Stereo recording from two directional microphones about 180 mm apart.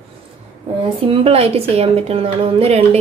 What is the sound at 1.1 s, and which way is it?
Speech, 35° right (ahead or behind).